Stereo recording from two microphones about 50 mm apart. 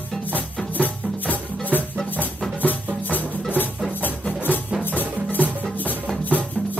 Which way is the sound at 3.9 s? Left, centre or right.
Left.